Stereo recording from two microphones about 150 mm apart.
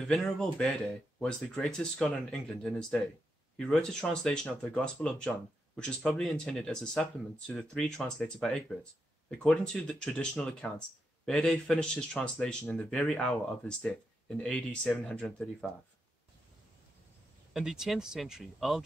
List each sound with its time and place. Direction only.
0.0 s speech: centre (ahead or behind)
17.5 s speech: centre (ahead or behind)